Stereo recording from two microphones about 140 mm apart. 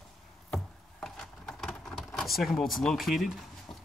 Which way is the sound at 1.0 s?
5° left (ahead or behind).